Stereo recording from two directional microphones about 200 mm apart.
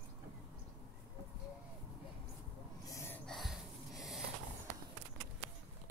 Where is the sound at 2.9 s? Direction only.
15° left (ahead or behind).